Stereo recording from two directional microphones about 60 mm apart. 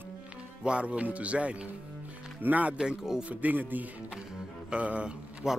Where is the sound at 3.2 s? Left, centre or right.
Right.